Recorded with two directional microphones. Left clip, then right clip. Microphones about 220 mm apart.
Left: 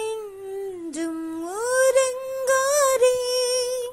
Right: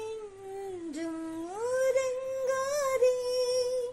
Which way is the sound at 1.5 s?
25° left (ahead or behind).